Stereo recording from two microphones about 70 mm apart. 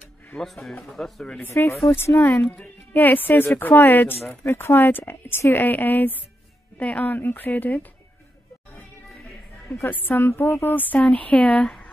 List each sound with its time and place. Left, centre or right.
0.4 s speech: centre
1.5 s speech: left
2.0 s speech: left
2.5 s speech: left
10.0 s speech: left